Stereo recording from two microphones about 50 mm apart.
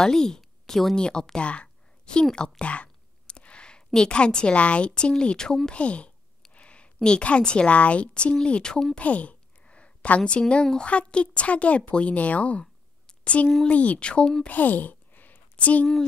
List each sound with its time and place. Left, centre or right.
0.0 s speech: centre
0.9 s a woman's voice: centre
8.9 s a sound: left
10.7 s a woman's voice: left
14.5 s sigh: left
15.5 s a woman's voice: left